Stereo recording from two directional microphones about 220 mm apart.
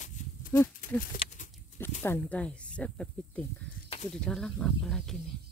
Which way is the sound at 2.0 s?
5° left (ahead or behind).